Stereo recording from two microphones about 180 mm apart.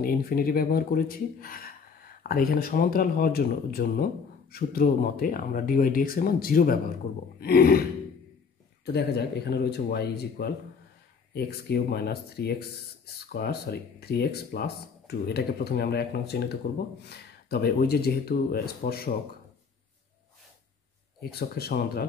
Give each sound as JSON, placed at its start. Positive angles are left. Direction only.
{"t": 0.0, "sound": "speech", "side_deg": 55}
{"t": 8.8, "sound": "speech", "side_deg": 65}
{"t": 21.2, "sound": "speech", "side_deg": 60}